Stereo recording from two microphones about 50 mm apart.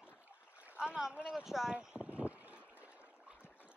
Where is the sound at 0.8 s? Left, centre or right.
Centre.